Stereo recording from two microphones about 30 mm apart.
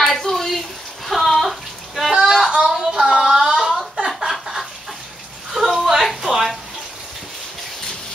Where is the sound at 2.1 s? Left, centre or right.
Centre.